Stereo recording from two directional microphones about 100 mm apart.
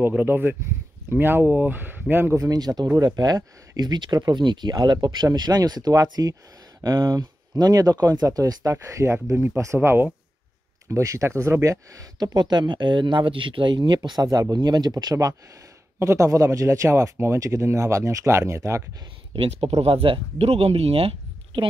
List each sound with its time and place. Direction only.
0.2 s speech: 20° right (ahead or behind)
2.3 s speech: 35° right (ahead or behind); by 10.0 s 20° right (ahead or behind)
10.9 s speech: 30° right (ahead or behind)
12.4 s speech: 45° right (ahead or behind); by 18.9 s 30° right (ahead or behind)
19.3 s speech: 65° right (ahead or behind); by 21.1 s 85° right